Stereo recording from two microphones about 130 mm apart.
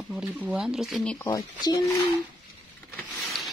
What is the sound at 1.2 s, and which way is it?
Speech, 25° left (ahead or behind).